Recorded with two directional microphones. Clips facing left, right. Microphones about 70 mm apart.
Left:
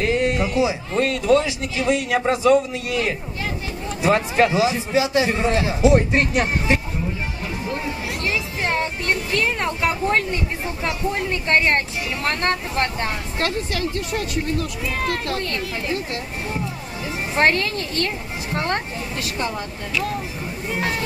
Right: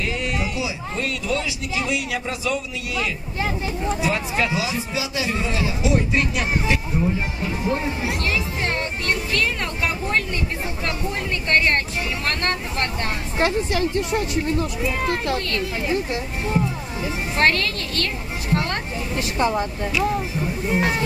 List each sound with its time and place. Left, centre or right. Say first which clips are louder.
0.0 s a man's voice: left 5 dB; left
7.6 s speech: right 4 dB; right
8.3 s speech: left 1 dB; left
11.4 s speech: left 1 dB; left
13.4 s speech: right 4 dB; centre
17.4 s a woman's voice: left 2 dB; left
19.1 s speech: right 6 dB; right